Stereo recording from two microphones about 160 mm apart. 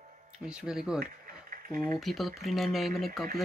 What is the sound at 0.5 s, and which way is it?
Speech, 5° right (ahead or behind).